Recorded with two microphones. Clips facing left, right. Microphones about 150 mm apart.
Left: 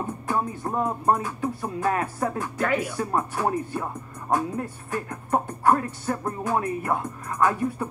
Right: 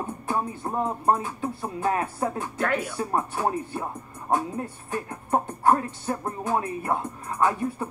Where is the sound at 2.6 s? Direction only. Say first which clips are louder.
Left 1 dB; centre (ahead or behind).